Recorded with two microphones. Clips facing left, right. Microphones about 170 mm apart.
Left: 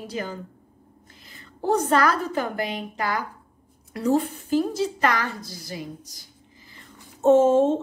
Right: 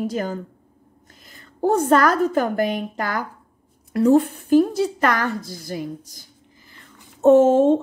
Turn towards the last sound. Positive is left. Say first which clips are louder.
# right 4 dB
turn(degrees=-60)  # may be behind; listen again after turning